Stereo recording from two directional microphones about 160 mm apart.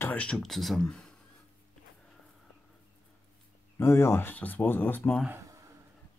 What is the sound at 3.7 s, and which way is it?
Speech, 15° left (ahead or behind).